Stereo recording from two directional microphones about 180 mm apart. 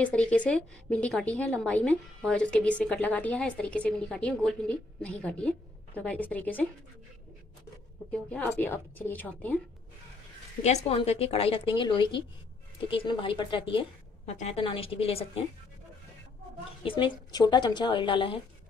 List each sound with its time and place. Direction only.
0.0 s a woman's voice: 5° left (ahead or behind)
8.1 s a woman's voice: 5° left (ahead or behind)
10.6 s speech: 40° left (ahead or behind)
16.8 s speech: 25° left (ahead or behind)